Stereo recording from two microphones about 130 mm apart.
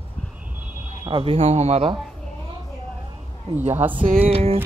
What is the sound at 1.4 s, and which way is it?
Speech, 60° right (ahead or behind).